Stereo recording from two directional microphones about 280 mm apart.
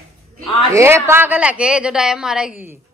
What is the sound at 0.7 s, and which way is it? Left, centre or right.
A woman's voice, centre.